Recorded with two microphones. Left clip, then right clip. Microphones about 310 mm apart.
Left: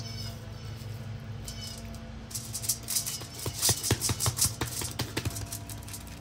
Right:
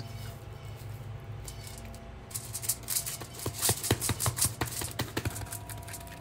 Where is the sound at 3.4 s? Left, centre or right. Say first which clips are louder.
Left 2 dB; centre.